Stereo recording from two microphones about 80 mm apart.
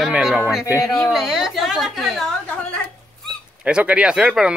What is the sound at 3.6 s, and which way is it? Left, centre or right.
Speech, centre.